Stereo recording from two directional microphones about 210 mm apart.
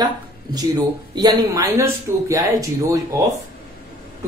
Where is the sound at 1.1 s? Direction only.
20° right (ahead or behind).